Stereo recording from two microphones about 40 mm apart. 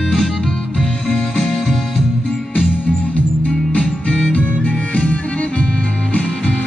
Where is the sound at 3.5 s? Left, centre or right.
Left.